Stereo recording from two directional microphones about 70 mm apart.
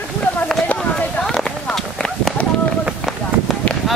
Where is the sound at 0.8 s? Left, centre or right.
Centre.